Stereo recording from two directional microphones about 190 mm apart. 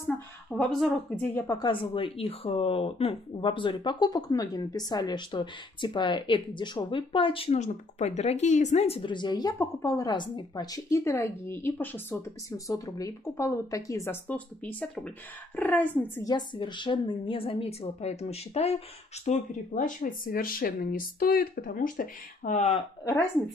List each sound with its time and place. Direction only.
0.6 s speech: 5° left (ahead or behind)
1.6 s a woman's voice: 25° left (ahead or behind)